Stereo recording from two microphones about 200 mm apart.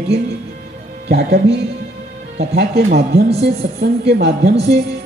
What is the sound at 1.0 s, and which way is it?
A woman's voice, 50° right (ahead or behind).